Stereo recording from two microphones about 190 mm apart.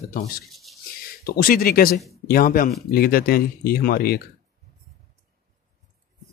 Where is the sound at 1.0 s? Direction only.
50° left (ahead or behind).